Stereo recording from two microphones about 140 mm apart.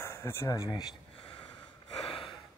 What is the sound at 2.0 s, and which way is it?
Gasp, 40° left (ahead or behind).